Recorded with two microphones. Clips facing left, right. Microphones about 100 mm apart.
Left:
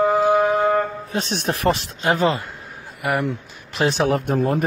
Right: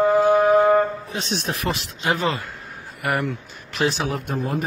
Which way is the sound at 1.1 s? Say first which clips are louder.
Left 3 dB; 50° left (ahead or behind).